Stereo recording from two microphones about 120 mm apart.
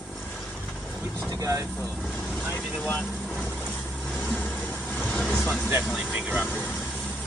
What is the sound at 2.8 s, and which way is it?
Speech, 10° left (ahead or behind).